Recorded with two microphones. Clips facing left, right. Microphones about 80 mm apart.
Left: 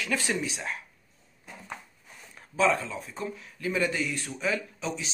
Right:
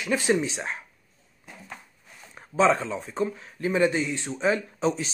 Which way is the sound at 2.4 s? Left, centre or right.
Right.